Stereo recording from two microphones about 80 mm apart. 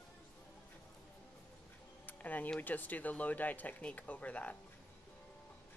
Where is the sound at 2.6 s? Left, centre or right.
Left.